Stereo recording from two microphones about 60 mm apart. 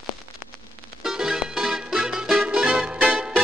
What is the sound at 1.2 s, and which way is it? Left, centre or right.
Music, centre.